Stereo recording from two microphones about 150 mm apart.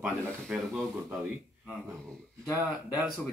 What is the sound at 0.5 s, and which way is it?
Speech, 10° right (ahead or behind).